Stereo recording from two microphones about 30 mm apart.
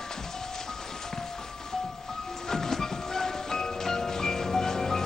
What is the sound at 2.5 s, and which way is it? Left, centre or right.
Music, centre.